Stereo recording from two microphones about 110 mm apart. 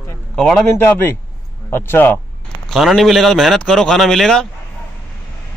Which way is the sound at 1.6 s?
20° left (ahead or behind).